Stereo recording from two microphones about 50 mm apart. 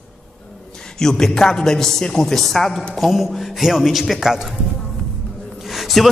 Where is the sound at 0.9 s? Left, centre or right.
Centre.